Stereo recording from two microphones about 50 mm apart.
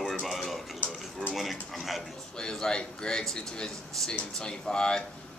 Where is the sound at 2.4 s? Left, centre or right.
Centre.